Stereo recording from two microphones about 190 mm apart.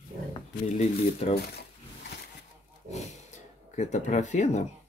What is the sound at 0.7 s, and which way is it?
Speech, 35° left (ahead or behind).